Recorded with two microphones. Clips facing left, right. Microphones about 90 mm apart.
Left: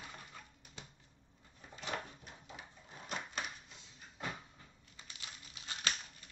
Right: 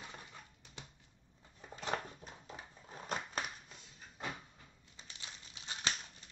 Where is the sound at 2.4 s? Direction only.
40° right (ahead or behind).